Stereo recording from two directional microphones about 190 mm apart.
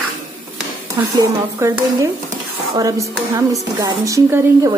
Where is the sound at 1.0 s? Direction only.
15° right (ahead or behind).